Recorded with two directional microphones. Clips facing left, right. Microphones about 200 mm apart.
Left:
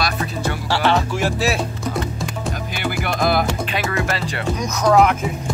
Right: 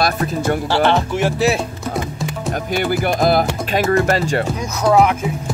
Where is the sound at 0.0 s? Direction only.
50° right (ahead or behind).